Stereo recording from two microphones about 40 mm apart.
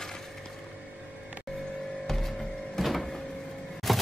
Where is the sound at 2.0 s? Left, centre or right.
Centre.